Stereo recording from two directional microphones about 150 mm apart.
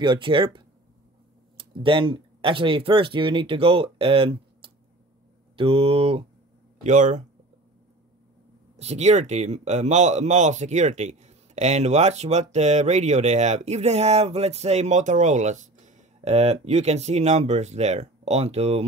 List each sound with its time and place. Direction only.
0.0 s speech: 35° right (ahead or behind)
6.8 s speech: 55° right (ahead or behind)
8.7 s speech: 45° right (ahead or behind)